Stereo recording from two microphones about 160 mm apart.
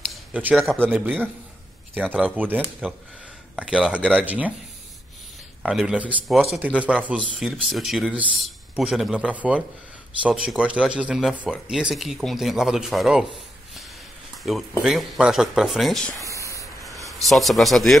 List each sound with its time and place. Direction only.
0.1 s a sound: 10° right (ahead or behind)
0.7 s speech: 10° right (ahead or behind)
5.6 s speech: 5° right (ahead or behind)
14.5 s speech: 5° right (ahead or behind)
16.3 s spray: 20° left (ahead or behind)
17.2 s speech: centre (ahead or behind)